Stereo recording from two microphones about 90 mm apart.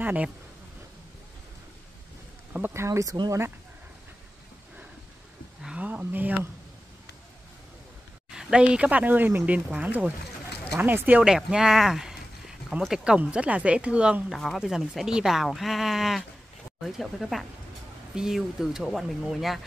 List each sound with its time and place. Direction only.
0.0 s speech: 15° right (ahead or behind)
2.5 s speech: 25° right (ahead or behind)
5.6 s a sound: 10° right (ahead or behind)
8.3 s speech: 10° right (ahead or behind)
11.2 s a sound: 5° right (ahead or behind)
12.8 s speech: 5° right (ahead or behind)
14.3 s speech: centre (ahead or behind)